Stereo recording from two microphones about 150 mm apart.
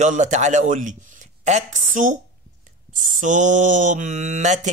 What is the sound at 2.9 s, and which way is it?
Mantra, 60° right (ahead or behind).